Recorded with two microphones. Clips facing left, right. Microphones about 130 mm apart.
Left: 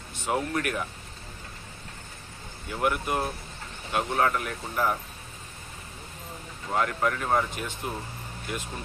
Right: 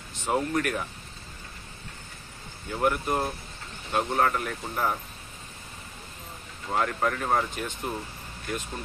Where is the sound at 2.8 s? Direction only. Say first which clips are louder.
Right 1 dB; 5° left (ahead or behind).